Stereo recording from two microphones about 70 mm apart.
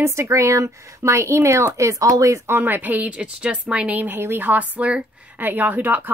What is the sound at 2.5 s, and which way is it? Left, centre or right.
A woman's voice, right.